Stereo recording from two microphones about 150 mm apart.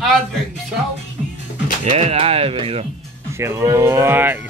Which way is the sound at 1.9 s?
45° right (ahead or behind).